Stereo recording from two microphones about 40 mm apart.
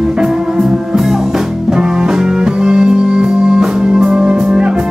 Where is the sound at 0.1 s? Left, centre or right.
Centre.